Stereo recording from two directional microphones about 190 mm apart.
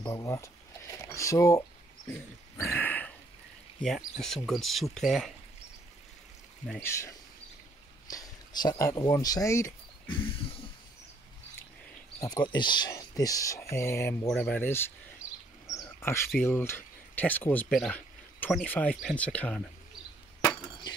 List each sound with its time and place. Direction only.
0.0 s speech: 15° left (ahead or behind); by 5.3 s centre (ahead or behind)
6.6 s speech: 10° left (ahead or behind); by 10.3 s 25° left (ahead or behind)
12.2 s speech: 20° left (ahead or behind)
15.6 s a sound: 15° left (ahead or behind)
16.3 s speech: 10° left (ahead or behind)